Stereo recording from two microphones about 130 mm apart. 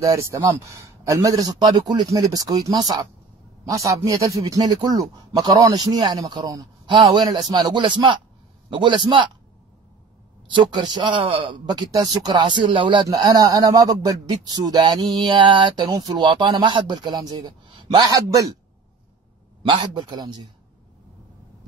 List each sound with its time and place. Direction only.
0.0 s a man's voice: 25° right (ahead or behind)
10.5 s speech: 35° right (ahead or behind)
19.6 s speech: 40° right (ahead or behind)